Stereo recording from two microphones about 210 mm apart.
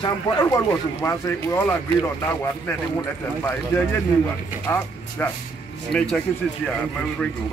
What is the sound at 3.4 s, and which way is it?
Speech, 10° left (ahead or behind).